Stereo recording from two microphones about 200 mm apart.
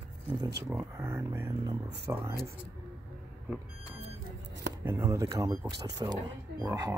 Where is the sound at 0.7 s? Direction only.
15° right (ahead or behind).